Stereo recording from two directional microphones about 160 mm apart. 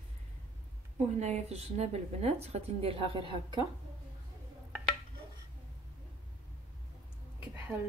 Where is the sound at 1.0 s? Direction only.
45° right (ahead or behind).